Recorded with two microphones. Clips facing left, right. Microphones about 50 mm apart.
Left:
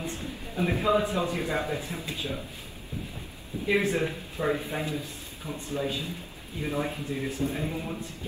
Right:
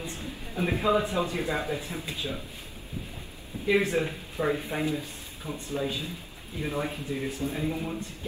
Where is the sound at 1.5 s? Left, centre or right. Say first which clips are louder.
Even; left.